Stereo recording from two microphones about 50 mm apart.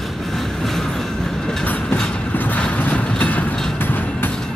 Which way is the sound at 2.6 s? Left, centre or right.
Left.